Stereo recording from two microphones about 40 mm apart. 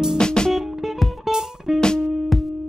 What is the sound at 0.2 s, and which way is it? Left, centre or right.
Music, left.